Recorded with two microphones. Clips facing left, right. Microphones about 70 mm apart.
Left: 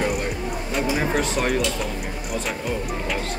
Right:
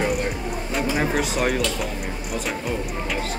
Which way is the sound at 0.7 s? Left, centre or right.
Centre.